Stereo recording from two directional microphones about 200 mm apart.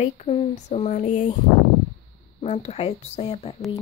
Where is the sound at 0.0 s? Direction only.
30° left (ahead or behind).